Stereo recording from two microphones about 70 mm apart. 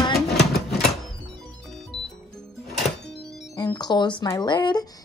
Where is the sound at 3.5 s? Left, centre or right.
Left.